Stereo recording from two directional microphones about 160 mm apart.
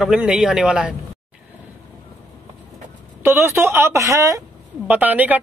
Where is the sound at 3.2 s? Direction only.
15° right (ahead or behind).